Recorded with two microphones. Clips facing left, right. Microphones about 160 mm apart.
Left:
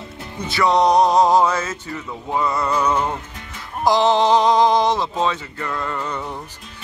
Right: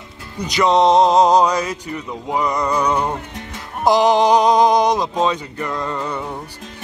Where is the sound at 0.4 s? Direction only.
20° right (ahead or behind).